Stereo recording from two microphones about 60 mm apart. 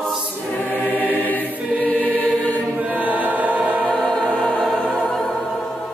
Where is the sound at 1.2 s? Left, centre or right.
Left.